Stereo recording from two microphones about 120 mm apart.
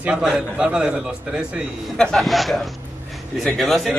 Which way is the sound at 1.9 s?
5° left (ahead or behind).